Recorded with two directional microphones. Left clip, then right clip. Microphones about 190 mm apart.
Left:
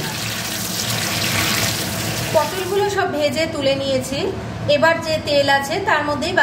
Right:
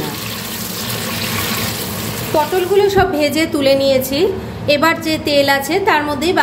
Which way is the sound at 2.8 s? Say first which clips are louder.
Right 5 dB; 35° right (ahead or behind).